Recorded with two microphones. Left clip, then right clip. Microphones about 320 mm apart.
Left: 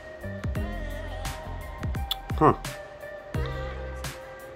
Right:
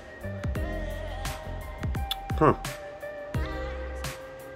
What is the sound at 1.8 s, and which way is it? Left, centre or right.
Music, centre.